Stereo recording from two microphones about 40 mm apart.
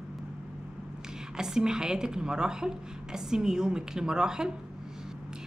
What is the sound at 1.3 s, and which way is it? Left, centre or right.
A woman's voice, centre.